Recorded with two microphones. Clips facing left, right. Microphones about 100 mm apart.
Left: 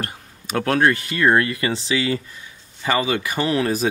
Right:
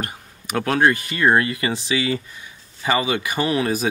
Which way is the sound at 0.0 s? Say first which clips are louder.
Even; 15° right (ahead or behind).